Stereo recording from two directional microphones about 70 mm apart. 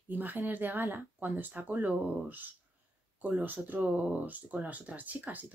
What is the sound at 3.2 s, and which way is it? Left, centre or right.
A woman's voice, right.